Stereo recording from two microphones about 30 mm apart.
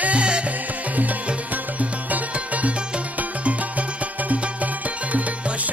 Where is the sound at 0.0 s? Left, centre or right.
Right.